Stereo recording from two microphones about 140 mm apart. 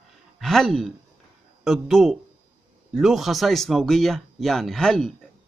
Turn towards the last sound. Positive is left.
turn(degrees=5)  # may be behind; listen again after turning